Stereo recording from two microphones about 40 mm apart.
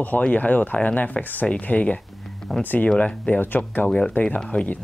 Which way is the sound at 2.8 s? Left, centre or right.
Left.